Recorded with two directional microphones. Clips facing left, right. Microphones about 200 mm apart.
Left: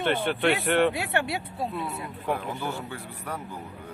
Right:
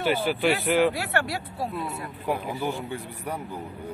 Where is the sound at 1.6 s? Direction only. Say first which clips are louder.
Right 2 dB; centre (ahead or behind).